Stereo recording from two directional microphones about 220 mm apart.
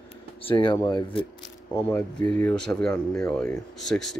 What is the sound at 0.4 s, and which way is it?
Speech, 25° left (ahead or behind).